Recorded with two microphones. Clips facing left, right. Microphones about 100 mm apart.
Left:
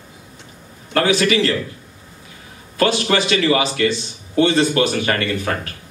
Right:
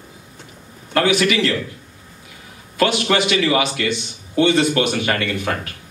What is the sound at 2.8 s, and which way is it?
A man's voice, 35° left (ahead or behind).